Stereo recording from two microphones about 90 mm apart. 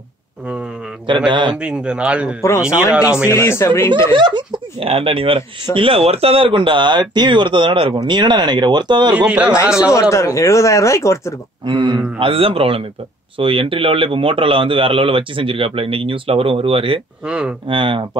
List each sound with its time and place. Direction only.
1.0 s speech: 60° right (ahead or behind)
1.6 s speech: 10° right (ahead or behind)
3.3 s speech: 30° left (ahead or behind)
4.1 s speech: 60° right (ahead or behind)
7.9 s speech: 55° right (ahead or behind)
9.1 s speech: 15° right (ahead or behind)
10.1 s speech: 35° left (ahead or behind)
11.6 s speech: 60° right (ahead or behind); by 17.0 s 90° right
17.2 s speech: 10° right (ahead or behind)
17.6 s speech: 75° right (ahead or behind)